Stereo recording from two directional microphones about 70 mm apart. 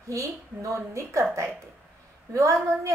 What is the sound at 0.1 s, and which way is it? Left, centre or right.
A woman's voice, right.